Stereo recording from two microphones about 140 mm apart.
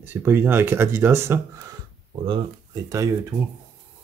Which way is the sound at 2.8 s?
25° right (ahead or behind).